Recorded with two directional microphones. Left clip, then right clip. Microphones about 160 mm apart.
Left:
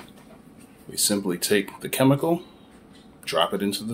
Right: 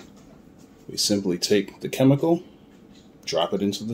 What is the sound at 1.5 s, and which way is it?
Speech, 20° right (ahead or behind).